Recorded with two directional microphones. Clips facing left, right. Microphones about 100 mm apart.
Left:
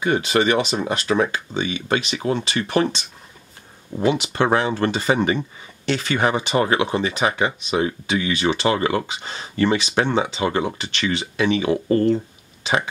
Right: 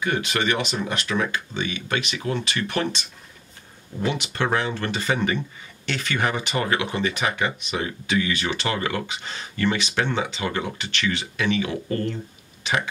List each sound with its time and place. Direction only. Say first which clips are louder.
0.0 s speech: left 5 dB; 30° left (ahead or behind)
4.1 s speech: left 5 dB; 30° left (ahead or behind)